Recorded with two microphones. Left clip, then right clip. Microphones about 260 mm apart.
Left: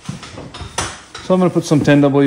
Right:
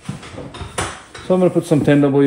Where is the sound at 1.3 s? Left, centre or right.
Left.